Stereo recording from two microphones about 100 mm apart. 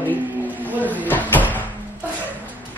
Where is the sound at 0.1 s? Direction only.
15° right (ahead or behind).